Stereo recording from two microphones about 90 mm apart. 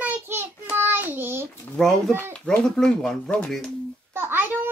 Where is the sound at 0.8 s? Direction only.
25° right (ahead or behind).